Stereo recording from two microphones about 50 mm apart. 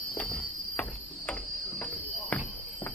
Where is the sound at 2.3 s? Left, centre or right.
Left.